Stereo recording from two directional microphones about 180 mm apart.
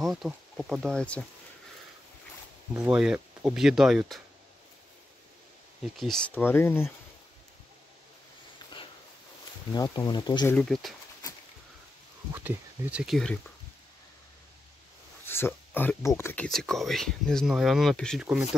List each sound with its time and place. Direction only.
0.0 s speech: centre (ahead or behind)
2.7 s speech: 10° right (ahead or behind)
5.9 s speech: 5° left (ahead or behind)
9.8 s speech: 20° left (ahead or behind)
10.5 s speech: centre (ahead or behind)
12.4 s speech: 5° right (ahead or behind)
15.2 s speech: 10° left (ahead or behind)
16.4 s speech: centre (ahead or behind)